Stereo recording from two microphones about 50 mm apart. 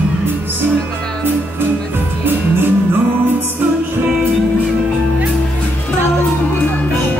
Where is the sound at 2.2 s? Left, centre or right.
Right.